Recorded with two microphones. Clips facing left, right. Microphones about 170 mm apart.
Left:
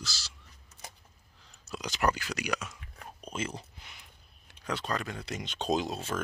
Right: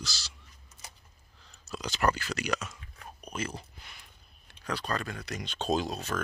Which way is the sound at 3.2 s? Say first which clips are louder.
Even; 25° left (ahead or behind).